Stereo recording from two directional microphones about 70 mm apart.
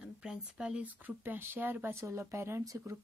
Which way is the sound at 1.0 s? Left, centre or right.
Right.